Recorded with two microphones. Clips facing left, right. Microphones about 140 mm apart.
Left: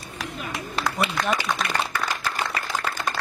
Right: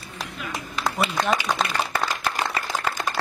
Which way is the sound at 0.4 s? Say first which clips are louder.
Left 2 dB; 35° left (ahead or behind).